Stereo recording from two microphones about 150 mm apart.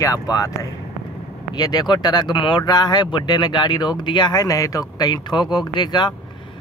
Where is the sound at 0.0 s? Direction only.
25° left (ahead or behind).